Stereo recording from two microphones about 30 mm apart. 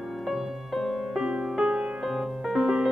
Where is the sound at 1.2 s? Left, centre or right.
Right.